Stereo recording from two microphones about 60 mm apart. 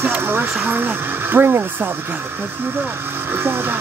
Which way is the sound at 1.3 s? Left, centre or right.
Right.